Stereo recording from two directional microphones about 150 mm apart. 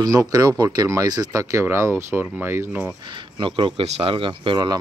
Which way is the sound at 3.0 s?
35° right (ahead or behind).